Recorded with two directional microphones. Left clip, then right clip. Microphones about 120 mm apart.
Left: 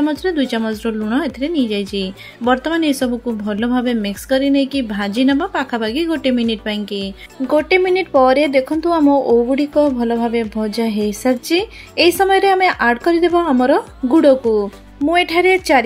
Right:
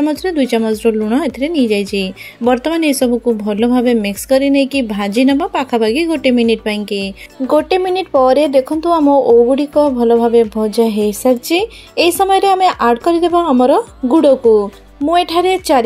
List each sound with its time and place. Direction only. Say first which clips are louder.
0.0 s speech: right 2 dB; 40° right (ahead or behind)
7.4 s speech: right 1 dB; 30° right (ahead or behind)